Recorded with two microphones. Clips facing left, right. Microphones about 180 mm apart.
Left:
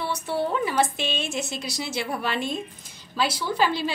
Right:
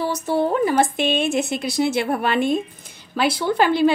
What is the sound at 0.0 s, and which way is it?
A woman's voice, 40° right (ahead or behind).